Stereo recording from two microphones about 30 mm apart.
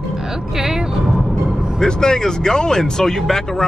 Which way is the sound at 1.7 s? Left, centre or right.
Left.